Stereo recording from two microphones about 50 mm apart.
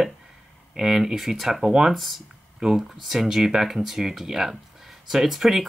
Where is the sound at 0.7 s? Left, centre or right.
Centre.